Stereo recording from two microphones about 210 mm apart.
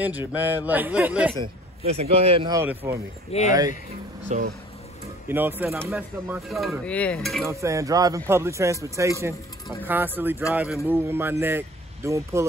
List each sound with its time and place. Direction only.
0.5 s speech: 10° right (ahead or behind)
1.4 s speech: 30° right (ahead or behind)
2.8 s speech: 10° right (ahead or behind)
3.3 s speech: 30° left (ahead or behind)
4.3 s speech: 35° right (ahead or behind)
5.3 s speech: 10° right (ahead or behind)
5.8 s stir: 5° right (ahead or behind)
7.4 s speech: 15° right (ahead or behind)